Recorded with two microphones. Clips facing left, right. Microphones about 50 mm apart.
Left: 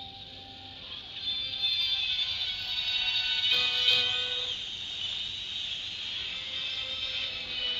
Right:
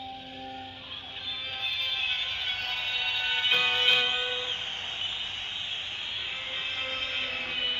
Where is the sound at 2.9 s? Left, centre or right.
Right.